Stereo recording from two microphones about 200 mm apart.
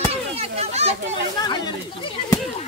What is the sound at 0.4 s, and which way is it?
Children playing, 35° right (ahead or behind).